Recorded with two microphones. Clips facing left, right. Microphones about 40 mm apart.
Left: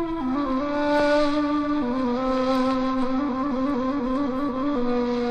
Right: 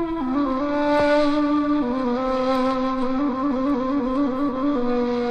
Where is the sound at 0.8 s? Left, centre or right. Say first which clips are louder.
Right 2 dB; centre.